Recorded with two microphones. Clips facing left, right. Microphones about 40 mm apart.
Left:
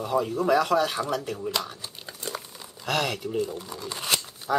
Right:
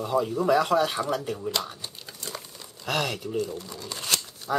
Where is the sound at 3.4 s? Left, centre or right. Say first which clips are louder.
Left 1 dB; centre.